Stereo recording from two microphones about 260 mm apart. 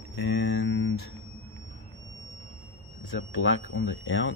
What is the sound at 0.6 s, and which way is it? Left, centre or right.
Speech, left.